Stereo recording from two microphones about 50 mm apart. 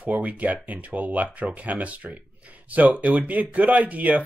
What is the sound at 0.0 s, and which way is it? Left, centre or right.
Speech, right.